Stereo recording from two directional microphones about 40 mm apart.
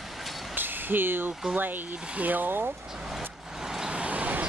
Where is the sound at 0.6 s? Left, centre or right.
Right.